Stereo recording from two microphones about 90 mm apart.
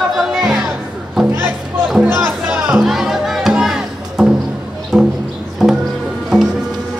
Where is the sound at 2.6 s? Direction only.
5° right (ahead or behind).